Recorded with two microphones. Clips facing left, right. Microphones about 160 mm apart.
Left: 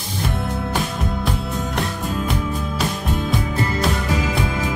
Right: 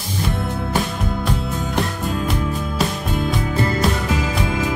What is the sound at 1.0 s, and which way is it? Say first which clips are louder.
Music: right 1 dB; centre (ahead or behind).